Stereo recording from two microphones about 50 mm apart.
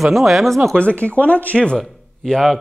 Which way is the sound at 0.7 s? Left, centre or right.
Left.